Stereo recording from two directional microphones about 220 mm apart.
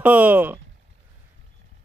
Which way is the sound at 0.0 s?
5° right (ahead or behind).